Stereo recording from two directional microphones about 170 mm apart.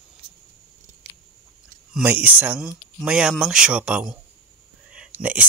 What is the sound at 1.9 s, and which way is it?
Speech, 10° right (ahead or behind).